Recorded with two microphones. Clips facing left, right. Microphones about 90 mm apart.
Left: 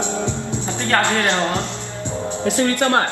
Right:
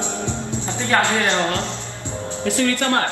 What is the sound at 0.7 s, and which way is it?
Music, 10° right (ahead or behind).